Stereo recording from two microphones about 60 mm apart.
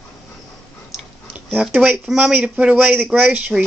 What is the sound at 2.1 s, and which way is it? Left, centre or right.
Speech, centre.